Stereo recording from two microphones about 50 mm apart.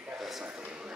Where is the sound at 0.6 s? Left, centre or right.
Centre.